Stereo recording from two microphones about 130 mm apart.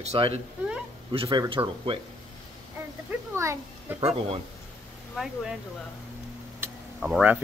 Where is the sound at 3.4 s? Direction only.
20° right (ahead or behind).